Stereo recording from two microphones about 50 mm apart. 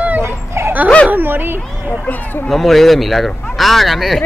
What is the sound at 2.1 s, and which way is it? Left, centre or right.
Speech, left.